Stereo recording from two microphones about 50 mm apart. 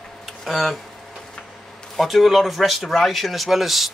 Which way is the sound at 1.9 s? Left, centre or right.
Centre.